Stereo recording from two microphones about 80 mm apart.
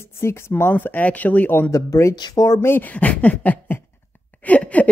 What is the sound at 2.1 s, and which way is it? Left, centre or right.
Speech, left.